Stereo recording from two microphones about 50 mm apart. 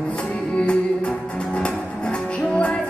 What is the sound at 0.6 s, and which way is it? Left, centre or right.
Music, left.